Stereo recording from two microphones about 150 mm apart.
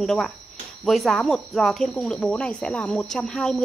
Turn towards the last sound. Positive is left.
turn(degrees=5)  # may be behind; listen again after turning